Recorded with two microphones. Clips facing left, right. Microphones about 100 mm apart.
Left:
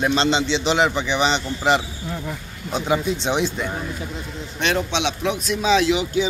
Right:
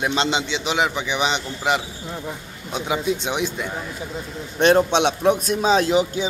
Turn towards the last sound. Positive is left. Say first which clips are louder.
# even
turn(degrees=-45)  # may be behind; listen again after turning